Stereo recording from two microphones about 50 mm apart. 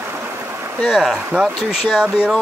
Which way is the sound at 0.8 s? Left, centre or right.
Centre.